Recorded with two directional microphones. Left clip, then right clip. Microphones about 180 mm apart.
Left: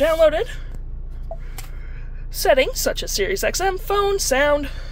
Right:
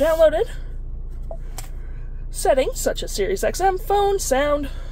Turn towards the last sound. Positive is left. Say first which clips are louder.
# left 2 dB
turn(degrees=-25)  # may be behind; listen again after turning